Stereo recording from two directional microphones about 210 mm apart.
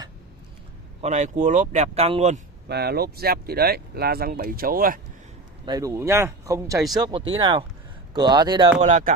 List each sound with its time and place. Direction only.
1.0 s speech: 35° right (ahead or behind)
2.7 s speech: 50° right (ahead or behind)
5.7 s speech: 15° right (ahead or behind)
8.8 s speech: 35° right (ahead or behind)